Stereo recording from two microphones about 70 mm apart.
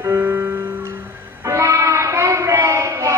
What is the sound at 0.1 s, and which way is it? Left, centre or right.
Music, right.